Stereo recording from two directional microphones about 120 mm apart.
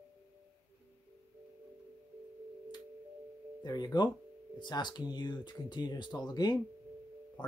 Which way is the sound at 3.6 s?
35° left (ahead or behind).